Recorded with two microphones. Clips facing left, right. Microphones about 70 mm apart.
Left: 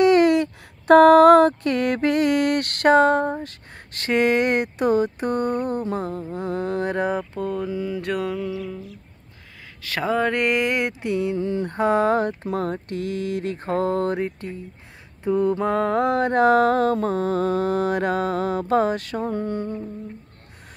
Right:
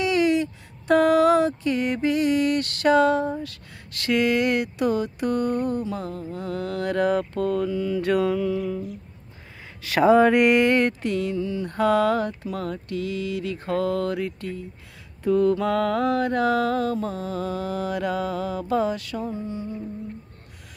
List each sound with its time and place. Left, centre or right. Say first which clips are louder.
0.0 s speech: left 5 dB; left
7.3 s mantra: right 2 dB; centre
8.0 s a sound: right 4 dB; centre
9.8 s a sound: right 6 dB; centre; by 11.3 s left
11.3 s speech: left 2 dB; left
15.2 s mantra: even; left